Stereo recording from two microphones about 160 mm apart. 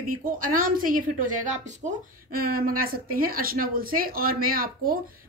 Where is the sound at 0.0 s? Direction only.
60° right (ahead or behind).